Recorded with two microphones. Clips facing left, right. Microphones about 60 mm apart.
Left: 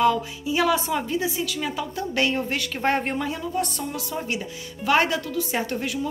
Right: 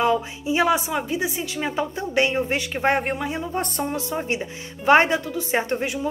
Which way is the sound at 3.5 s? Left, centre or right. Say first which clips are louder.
Right 2 dB; right.